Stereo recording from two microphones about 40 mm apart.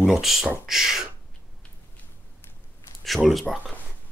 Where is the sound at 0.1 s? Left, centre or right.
Centre.